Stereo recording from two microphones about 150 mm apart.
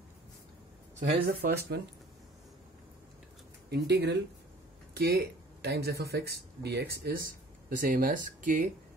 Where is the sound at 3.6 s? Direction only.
90° right.